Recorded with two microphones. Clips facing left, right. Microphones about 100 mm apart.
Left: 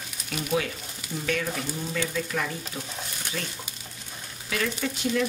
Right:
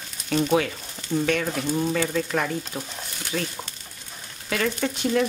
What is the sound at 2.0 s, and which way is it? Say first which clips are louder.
Speech: right 5 dB; 50° right (ahead or behind).